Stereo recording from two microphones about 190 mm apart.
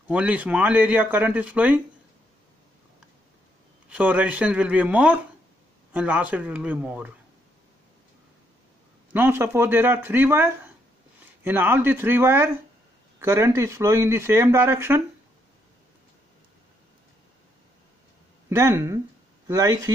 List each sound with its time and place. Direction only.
0.1 s speech: 10° right (ahead or behind)
3.9 s speech: 10° right (ahead or behind)
9.1 s speech: 10° right (ahead or behind)
18.5 s speech: 15° right (ahead or behind)